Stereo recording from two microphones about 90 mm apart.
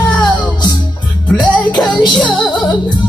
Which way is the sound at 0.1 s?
15° left (ahead or behind).